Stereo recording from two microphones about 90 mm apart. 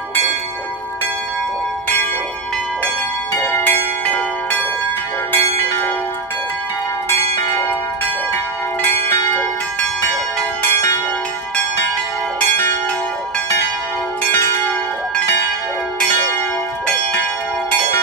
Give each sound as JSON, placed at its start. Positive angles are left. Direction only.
{"t": 3.4, "sound": "church bell", "side_deg": 25}
{"t": 7.5, "sound": "church bell", "side_deg": 25}
{"t": 10.6, "sound": "church bell", "side_deg": 25}